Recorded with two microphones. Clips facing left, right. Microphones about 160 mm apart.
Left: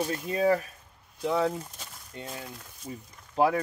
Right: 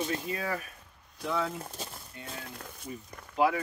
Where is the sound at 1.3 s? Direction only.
30° left (ahead or behind).